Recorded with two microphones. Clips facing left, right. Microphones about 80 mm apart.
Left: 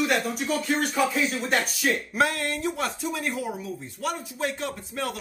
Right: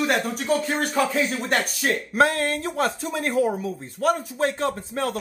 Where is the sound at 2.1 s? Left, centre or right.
Right.